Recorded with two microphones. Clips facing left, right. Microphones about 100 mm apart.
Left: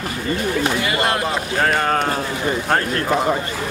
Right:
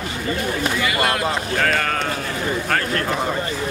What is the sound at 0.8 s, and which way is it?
Speech, 30° left (ahead or behind).